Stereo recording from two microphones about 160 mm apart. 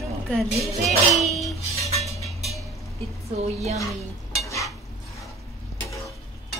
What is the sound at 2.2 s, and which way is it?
Music, centre (ahead or behind).